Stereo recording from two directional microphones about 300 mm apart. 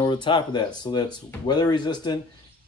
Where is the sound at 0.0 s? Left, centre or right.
Centre.